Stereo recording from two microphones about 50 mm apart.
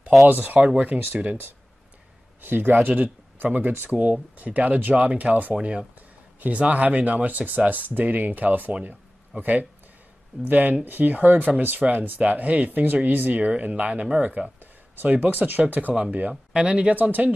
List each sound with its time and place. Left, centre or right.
0.3 s speech: right
0.6 s speech: right
2.4 s speech: right
14.6 s speech: right
15.9 s speech: right
16.9 s speech: right